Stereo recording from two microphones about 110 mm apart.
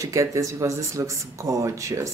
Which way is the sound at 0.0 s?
30° right (ahead or behind).